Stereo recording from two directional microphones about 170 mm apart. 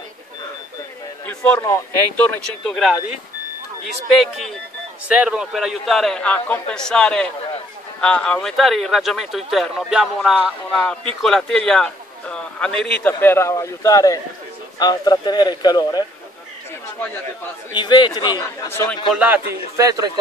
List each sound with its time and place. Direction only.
1.2 s a man's voice: 10° left (ahead or behind)
17.7 s a man's voice: 25° left (ahead or behind)
19.1 s a man's voice: 10° right (ahead or behind)